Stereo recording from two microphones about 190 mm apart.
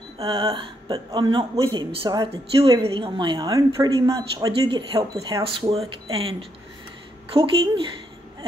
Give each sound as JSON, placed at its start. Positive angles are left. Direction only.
{"t": 0.2, "sound": "speech", "side_deg": -25}
{"t": 7.3, "sound": "speech", "side_deg": -25}